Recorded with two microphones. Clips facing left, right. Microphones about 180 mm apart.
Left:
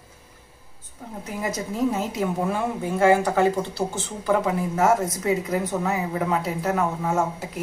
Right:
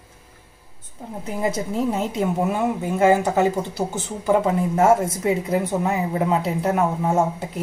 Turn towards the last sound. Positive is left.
turn(degrees=-25)  # may be behind; listen again after turning